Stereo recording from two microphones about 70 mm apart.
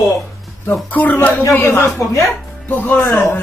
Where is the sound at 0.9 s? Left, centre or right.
Left.